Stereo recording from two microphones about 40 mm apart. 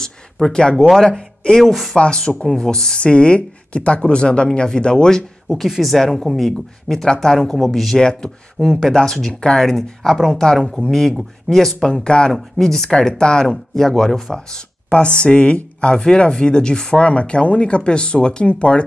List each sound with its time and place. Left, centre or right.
0.5 s speech: centre
1.6 s speech: centre
2.0 s speech: left
5.5 s speech: centre
5.8 s speech: centre
6.5 s speech: centre
7.5 s speech: centre
8.0 s speech: centre
8.6 s speech: centre
11.9 s speech: left
12.3 s speech: centre
13.2 s speech: left
13.7 s speech: centre
14.9 s speech: left